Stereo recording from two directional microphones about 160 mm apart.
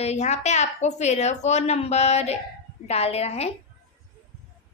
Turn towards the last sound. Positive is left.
turn(degrees=40)  # may be behind; listen again after turning